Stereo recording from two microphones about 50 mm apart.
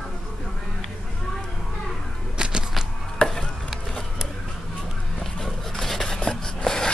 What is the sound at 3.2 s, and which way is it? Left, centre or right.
Stir, left.